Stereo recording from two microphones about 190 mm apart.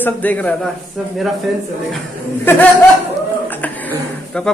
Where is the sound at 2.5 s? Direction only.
10° left (ahead or behind).